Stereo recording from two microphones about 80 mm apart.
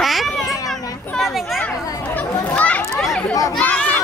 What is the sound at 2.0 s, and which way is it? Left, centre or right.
Children playing, centre.